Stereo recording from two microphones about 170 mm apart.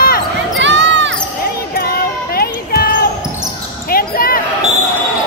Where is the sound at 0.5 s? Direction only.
90° right.